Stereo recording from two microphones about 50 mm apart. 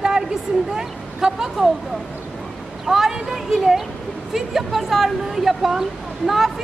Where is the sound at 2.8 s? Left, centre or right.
Centre.